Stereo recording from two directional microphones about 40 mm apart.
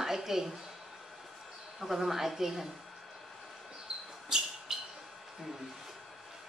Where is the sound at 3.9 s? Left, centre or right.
Right.